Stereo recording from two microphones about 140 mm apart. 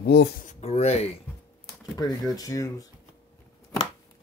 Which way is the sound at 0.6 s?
50° left (ahead or behind).